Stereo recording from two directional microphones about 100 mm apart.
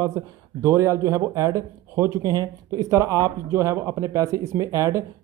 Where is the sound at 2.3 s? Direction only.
40° right (ahead or behind).